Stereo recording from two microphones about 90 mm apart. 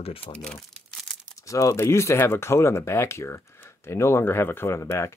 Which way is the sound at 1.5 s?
35° left (ahead or behind).